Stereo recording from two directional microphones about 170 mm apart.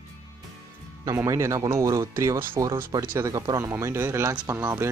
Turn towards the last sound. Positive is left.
turn(degrees=-15)  # may be behind; listen again after turning